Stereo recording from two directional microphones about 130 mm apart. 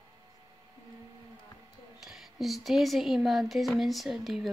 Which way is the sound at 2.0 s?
Centre (ahead or behind).